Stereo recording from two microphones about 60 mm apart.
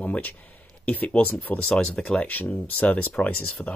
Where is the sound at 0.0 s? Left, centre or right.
Left.